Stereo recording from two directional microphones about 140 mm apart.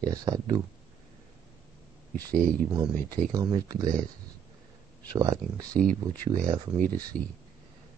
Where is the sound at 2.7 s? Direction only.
30° right (ahead or behind).